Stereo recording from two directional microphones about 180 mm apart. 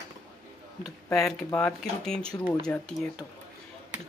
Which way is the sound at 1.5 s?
10° left (ahead or behind).